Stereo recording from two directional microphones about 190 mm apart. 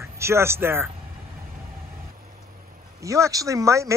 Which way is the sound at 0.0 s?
15° right (ahead or behind).